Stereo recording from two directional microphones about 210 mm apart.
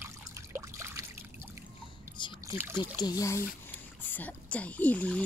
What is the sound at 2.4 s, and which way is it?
Rowboat, 10° right (ahead or behind).